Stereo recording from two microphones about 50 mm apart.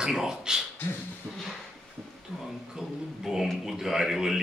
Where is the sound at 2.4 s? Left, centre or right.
Centre.